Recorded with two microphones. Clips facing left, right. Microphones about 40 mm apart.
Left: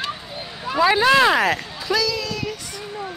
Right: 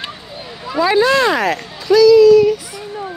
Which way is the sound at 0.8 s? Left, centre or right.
Centre.